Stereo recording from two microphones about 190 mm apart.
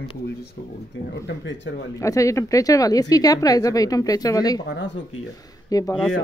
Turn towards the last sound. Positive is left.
turn(degrees=20)  # may be behind; listen again after turning